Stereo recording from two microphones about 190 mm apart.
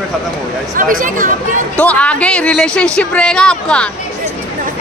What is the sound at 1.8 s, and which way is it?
Speech, 5° left (ahead or behind).